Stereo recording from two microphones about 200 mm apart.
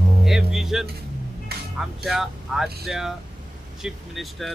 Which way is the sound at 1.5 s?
50° right (ahead or behind).